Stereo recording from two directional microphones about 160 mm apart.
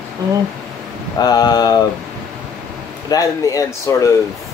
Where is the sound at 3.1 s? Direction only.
20° left (ahead or behind).